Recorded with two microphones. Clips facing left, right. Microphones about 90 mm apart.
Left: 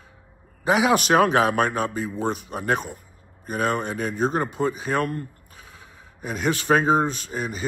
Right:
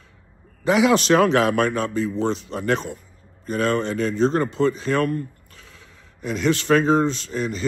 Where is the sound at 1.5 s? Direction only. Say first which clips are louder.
Right 2 dB; 50° left (ahead or behind).